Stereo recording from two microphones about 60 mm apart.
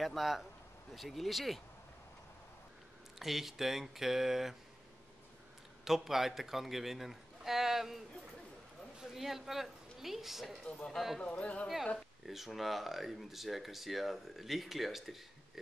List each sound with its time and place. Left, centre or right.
0.0 s speech: centre
3.2 s speech: centre
5.9 s speech: centre
9.1 s speech: centre
10.6 s speech: centre
11.6 s speech: centre